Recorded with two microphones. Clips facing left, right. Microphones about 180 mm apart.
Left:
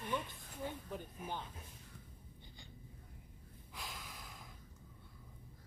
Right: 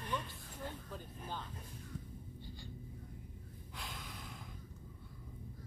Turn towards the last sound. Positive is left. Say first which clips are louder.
# right 2 dB
turn(degrees=5)  # may be behind; listen again after turning